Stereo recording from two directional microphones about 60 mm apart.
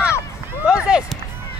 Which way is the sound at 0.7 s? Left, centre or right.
Centre.